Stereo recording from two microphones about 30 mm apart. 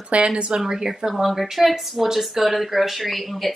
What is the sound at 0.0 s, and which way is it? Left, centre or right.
Speech, right.